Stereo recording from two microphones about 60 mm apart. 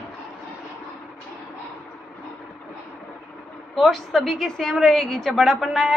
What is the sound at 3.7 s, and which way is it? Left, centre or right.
A woman's voice, centre.